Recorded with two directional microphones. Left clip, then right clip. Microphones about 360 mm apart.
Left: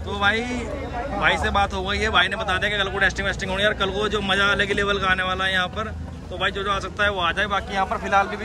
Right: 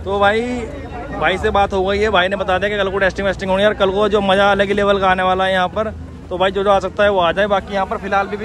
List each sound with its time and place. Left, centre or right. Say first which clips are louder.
0.1 s speech: right 7 dB; centre